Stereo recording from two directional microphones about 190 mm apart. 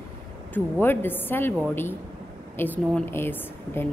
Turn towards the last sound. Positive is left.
turn(degrees=10)  # may be behind; listen again after turning